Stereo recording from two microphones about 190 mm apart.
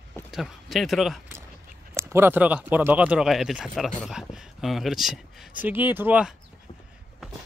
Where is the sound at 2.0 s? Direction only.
10° right (ahead or behind).